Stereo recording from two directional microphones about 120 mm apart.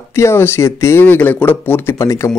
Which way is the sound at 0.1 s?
20° left (ahead or behind).